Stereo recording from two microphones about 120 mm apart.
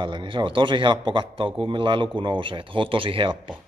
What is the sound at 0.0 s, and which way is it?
A man's voice, 40° right (ahead or behind).